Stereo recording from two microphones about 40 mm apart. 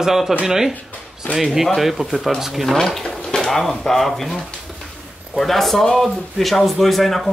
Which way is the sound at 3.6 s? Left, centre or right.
Centre.